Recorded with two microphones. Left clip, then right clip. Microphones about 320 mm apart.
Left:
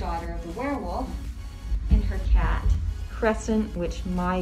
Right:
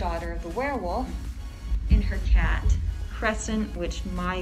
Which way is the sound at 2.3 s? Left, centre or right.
Centre.